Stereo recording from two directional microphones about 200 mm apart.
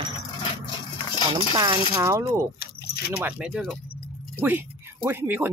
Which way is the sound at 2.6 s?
50° left (ahead or behind).